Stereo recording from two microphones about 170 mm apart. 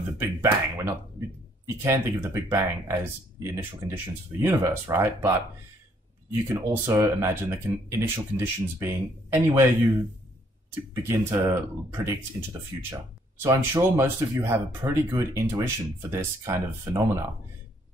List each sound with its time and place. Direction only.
0.4 s speech: 15° right (ahead or behind)
6.5 s speech: 15° right (ahead or behind)
11.0 s speech: 15° right (ahead or behind)